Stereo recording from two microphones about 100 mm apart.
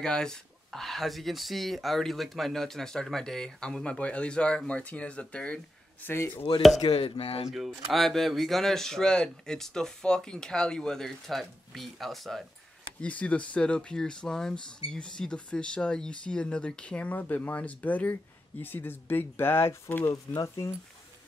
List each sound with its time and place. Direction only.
0.0 s speech: 5° left (ahead or behind)
6.0 s speech: 20° left (ahead or behind)
7.1 s speech: 70° left (ahead or behind)
7.4 s speech: centre (ahead or behind)
13.0 s speech: 15° left (ahead or behind)
20.4 s speech: 30° left (ahead or behind)